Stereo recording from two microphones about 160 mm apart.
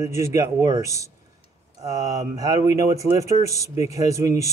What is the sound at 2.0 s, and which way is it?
Speech, 25° right (ahead or behind).